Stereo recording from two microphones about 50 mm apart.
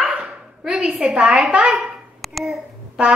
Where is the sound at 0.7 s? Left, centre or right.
Right.